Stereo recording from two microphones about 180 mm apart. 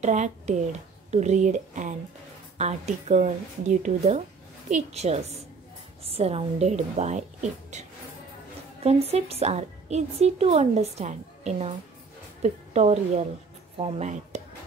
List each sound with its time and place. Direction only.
0.0 s a woman's voice: 40° right (ahead or behind)
8.8 s a woman's voice: 35° right (ahead or behind)